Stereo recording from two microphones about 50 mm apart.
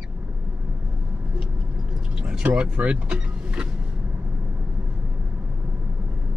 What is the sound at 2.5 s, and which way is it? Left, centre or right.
Speech, right.